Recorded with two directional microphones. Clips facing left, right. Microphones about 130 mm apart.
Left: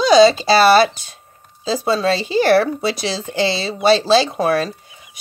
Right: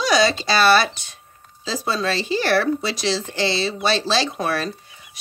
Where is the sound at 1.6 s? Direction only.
25° left (ahead or behind).